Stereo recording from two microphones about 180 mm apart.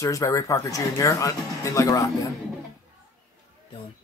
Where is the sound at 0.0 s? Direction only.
15° left (ahead or behind).